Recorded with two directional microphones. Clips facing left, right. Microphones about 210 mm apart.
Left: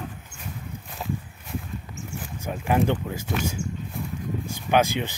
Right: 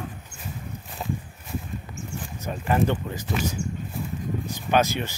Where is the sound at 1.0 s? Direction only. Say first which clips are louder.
Even; centre (ahead or behind).